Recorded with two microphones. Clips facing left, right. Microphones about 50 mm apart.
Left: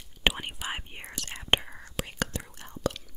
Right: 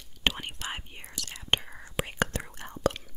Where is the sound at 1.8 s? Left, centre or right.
Right.